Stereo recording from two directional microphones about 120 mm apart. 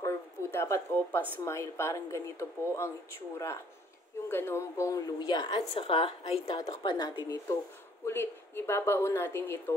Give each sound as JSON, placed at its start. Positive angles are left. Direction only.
{"t": 0.0, "sound": "a sound", "side_deg": 20}
{"t": 1.4, "sound": "speech", "side_deg": 25}
{"t": 4.3, "sound": "speech", "side_deg": 20}
{"t": 5.8, "sound": "a woman's voice", "side_deg": 50}
{"t": 6.5, "sound": "speech", "side_deg": 35}
{"t": 8.0, "sound": "speech", "side_deg": 20}